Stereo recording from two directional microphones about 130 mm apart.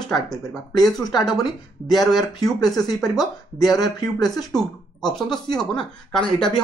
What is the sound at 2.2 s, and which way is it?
Speech, 30° left (ahead or behind).